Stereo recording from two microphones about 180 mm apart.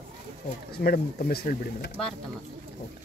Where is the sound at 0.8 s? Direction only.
55° left (ahead or behind).